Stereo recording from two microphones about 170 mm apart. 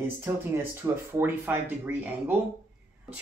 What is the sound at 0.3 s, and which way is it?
Speech, 15° right (ahead or behind).